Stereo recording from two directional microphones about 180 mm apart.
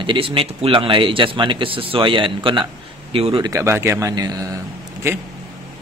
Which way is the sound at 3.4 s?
15° right (ahead or behind).